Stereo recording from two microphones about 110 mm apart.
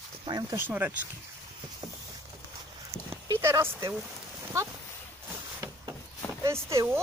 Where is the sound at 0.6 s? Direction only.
15° right (ahead or behind).